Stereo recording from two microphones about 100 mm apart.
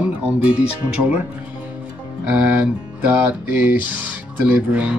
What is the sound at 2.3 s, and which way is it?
Music, 15° right (ahead or behind).